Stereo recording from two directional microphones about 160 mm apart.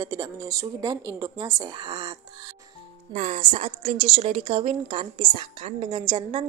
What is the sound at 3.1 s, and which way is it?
A woman's voice, 40° right (ahead or behind).